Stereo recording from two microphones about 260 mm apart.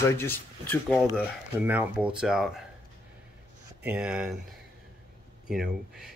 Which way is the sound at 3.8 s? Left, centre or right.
Centre.